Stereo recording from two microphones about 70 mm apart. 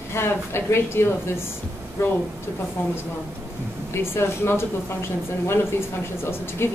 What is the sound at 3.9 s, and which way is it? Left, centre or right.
A woman's voice, left.